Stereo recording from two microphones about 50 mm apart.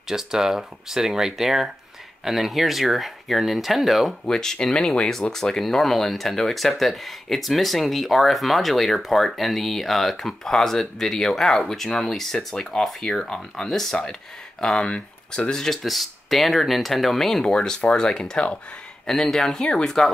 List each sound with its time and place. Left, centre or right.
0.1 s speech: centre
4.3 s speech: centre
17.5 s speech: centre